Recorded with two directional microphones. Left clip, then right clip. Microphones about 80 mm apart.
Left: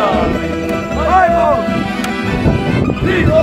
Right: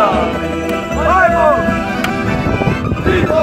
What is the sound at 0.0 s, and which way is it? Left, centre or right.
Music, centre.